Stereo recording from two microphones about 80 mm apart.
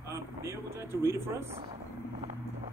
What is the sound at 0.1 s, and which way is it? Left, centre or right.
Speech, right.